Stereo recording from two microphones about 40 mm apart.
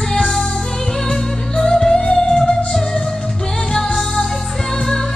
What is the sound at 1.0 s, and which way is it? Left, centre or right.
Music, centre.